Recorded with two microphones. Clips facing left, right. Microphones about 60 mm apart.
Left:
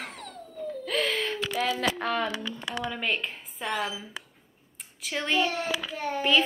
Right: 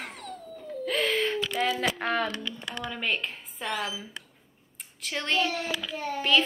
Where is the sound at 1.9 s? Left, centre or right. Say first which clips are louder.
Right 1 dB; right.